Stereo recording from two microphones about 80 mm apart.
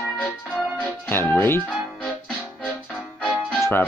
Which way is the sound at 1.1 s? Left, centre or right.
Left.